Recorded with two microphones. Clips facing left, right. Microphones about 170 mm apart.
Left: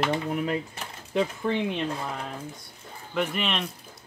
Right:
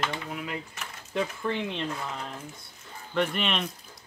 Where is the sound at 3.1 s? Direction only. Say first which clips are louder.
Even; 5° left (ahead or behind).